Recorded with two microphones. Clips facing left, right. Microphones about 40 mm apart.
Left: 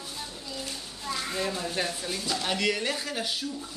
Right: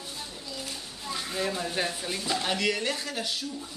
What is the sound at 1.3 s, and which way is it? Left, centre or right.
Speech, centre.